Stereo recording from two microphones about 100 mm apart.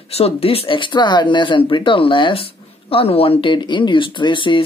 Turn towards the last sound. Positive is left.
turn(degrees=55)  # may be behind; listen again after turning